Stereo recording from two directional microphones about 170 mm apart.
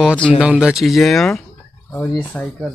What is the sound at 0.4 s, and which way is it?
Mantra, 5° right (ahead or behind).